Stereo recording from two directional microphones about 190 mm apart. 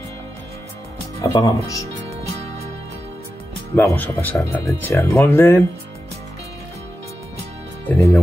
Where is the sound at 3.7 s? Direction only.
10° left (ahead or behind).